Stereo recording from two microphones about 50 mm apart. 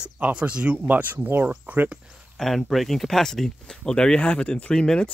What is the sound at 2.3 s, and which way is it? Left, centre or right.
Speech, centre.